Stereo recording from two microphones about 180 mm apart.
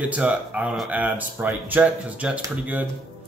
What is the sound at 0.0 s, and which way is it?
Speech, 10° right (ahead or behind).